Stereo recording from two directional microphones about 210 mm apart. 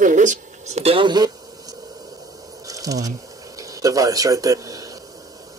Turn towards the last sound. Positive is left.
turn(degrees=-15)  # may be behind; listen again after turning